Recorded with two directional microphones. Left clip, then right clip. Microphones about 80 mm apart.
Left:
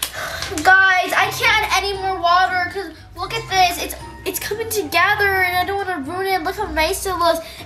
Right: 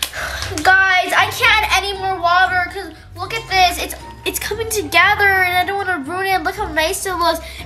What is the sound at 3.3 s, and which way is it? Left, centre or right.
A child's voice, centre.